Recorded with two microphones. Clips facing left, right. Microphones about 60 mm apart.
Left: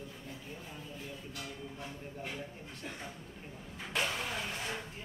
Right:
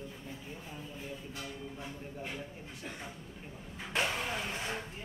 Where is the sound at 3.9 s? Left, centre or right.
Right.